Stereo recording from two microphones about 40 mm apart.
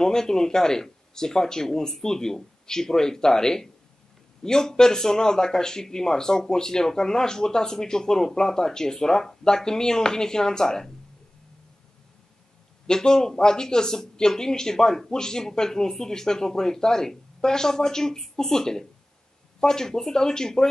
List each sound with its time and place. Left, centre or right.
0.0 s speech: centre
12.8 s speech: centre